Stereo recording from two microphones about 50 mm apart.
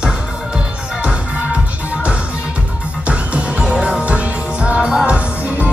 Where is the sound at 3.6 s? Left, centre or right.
Right.